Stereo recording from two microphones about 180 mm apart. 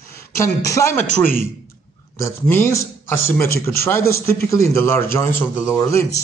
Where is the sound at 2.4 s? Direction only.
15° left (ahead or behind).